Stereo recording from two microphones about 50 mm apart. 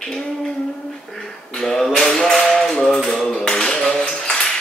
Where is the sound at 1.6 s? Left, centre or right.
Centre.